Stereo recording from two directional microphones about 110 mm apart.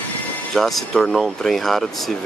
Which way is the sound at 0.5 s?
Centre (ahead or behind).